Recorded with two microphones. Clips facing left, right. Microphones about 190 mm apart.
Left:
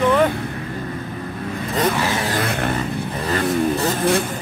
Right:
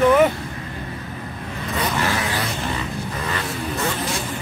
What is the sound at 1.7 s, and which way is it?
Speech, 45° left (ahead or behind).